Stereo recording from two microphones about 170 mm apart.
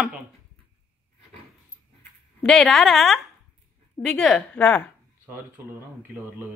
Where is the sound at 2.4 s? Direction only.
Centre (ahead or behind).